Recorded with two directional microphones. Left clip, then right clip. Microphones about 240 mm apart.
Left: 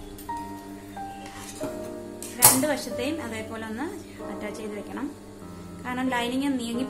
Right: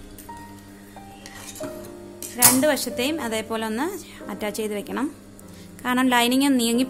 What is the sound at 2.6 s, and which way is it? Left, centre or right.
A woman's voice, right.